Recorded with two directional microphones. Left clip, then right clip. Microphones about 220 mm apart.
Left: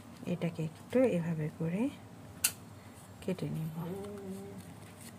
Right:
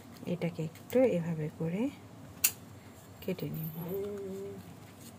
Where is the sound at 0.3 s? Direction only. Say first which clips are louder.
Right 2 dB; centre (ahead or behind).